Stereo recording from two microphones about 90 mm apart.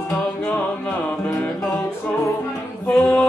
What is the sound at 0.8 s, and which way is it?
Music, 15° left (ahead or behind).